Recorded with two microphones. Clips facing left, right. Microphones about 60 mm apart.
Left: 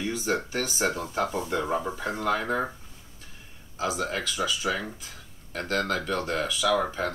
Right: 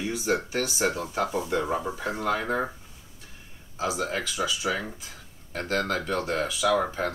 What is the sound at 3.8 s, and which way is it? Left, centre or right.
Speech, centre.